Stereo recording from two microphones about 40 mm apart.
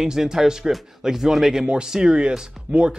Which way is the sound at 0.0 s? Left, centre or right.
Centre.